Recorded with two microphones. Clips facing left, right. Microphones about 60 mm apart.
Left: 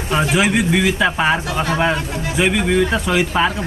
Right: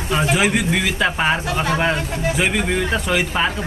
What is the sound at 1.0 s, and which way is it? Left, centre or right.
Speech, centre.